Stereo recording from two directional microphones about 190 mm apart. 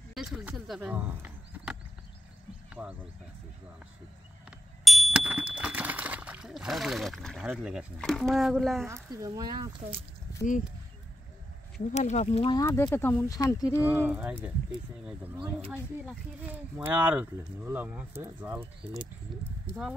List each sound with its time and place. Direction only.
0.1 s speech: 5° right (ahead or behind)
4.5 s a sound: centre (ahead or behind)
8.8 s speech: 15° right (ahead or behind)
11.9 s speech: 35° left (ahead or behind)
12.5 s speech: 15° left (ahead or behind)
13.8 s speech: 10° right (ahead or behind)